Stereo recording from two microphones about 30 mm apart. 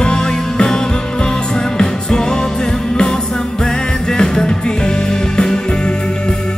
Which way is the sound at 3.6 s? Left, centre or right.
Centre.